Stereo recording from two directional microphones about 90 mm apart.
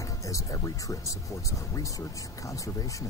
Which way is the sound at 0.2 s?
40° left (ahead or behind).